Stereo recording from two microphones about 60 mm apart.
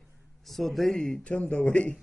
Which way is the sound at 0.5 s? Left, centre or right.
Centre.